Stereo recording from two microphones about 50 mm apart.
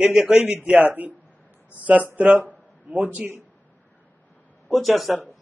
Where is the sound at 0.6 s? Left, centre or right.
Right.